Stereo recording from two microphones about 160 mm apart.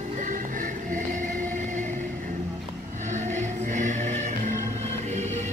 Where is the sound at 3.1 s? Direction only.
50° right (ahead or behind).